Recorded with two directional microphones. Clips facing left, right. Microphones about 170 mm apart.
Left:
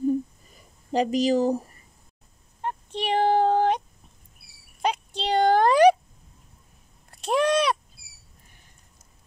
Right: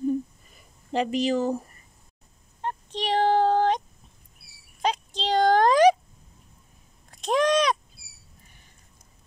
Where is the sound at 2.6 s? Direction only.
5° left (ahead or behind).